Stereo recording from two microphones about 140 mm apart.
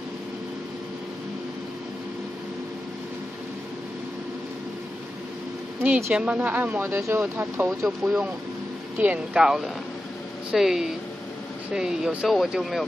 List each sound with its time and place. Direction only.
5.9 s speech: 20° right (ahead or behind)
7.8 s speech: 5° right (ahead or behind)